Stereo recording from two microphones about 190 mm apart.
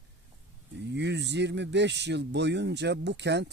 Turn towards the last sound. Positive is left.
turn(degrees=-65)  # may be behind; listen again after turning